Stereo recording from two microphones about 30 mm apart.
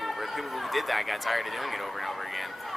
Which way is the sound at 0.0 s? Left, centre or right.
Centre.